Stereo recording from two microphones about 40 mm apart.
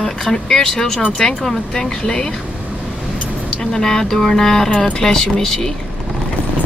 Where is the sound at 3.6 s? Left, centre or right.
Centre.